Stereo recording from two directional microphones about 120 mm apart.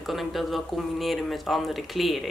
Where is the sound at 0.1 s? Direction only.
Centre (ahead or behind).